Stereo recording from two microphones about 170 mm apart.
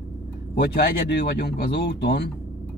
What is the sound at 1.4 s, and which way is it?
Speech, 75° left (ahead or behind).